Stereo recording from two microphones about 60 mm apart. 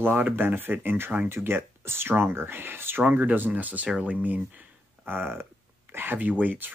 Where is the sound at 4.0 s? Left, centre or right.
Right.